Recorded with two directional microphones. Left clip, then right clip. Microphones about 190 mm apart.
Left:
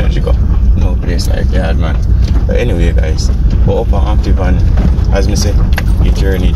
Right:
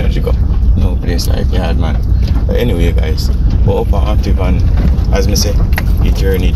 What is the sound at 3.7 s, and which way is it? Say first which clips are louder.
Speech: left 1 dB; 15° right (ahead or behind).